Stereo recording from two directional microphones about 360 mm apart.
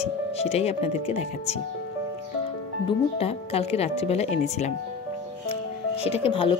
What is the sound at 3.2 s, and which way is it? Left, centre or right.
Speech, centre.